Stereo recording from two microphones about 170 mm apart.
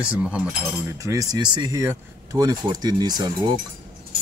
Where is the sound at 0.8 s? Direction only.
20° right (ahead or behind).